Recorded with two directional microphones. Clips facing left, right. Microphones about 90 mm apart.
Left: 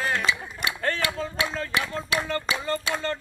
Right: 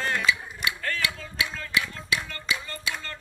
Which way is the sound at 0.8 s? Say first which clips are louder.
Left 4 dB; 35° left (ahead or behind).